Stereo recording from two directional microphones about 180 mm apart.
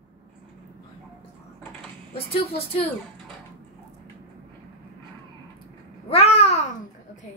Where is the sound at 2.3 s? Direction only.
35° left (ahead or behind).